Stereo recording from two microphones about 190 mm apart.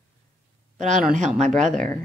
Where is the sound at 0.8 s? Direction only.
40° right (ahead or behind).